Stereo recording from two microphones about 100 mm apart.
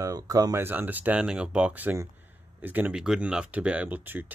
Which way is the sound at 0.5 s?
20° right (ahead or behind).